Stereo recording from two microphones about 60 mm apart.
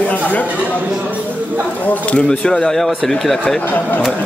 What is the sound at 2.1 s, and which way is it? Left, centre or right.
Speech, centre.